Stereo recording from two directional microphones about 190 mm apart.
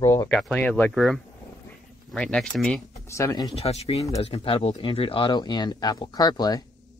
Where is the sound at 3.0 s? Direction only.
15° left (ahead or behind).